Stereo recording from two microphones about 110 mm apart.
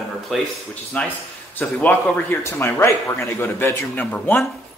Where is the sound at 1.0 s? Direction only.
10° left (ahead or behind).